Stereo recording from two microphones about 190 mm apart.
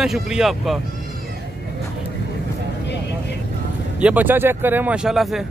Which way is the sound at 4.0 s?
5° right (ahead or behind).